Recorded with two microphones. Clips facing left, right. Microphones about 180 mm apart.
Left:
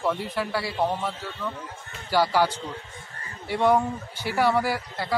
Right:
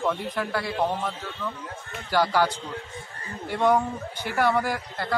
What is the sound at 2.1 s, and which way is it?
A man's voice, 10° left (ahead or behind).